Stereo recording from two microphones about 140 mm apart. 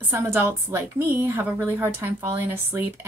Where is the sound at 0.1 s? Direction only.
15° right (ahead or behind).